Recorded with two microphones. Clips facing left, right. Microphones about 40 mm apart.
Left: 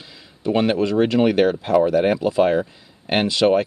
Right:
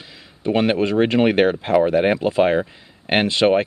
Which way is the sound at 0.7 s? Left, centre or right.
Right.